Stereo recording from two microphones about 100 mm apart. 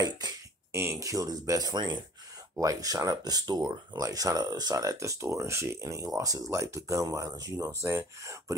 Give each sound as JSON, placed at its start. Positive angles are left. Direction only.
{"t": 0.7, "sound": "speech", "side_deg": -30}